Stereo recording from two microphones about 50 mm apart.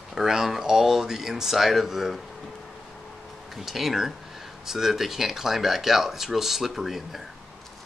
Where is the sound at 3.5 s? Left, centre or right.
Centre.